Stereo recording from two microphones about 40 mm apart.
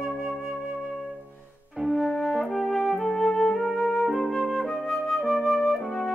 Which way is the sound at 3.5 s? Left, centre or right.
Centre.